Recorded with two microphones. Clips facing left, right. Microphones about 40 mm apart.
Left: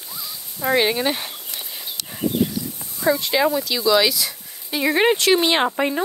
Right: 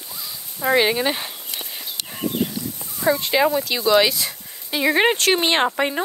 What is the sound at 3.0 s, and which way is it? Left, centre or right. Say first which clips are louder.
Speech: even; right.